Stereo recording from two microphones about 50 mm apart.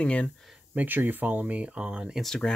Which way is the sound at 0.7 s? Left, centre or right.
Right.